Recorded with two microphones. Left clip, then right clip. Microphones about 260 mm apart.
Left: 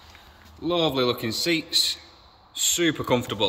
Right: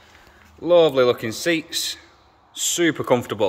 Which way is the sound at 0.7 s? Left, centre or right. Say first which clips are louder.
Right 8 dB; centre.